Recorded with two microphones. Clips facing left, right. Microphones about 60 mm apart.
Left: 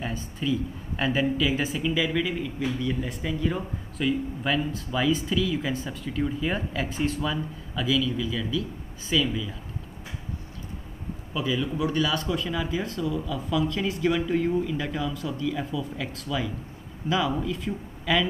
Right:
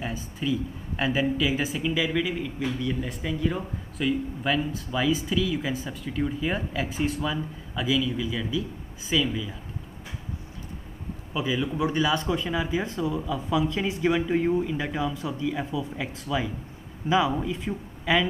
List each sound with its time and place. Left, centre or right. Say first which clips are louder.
0.0 s speech: even; centre
11.3 s speech: even; centre